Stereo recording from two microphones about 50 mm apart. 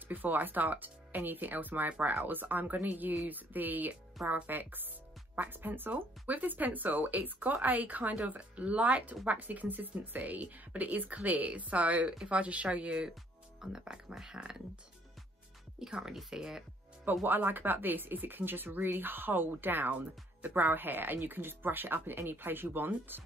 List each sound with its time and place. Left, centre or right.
0.1 s speech: right
13.6 s speech: centre
15.8 s speech: centre
17.0 s speech: right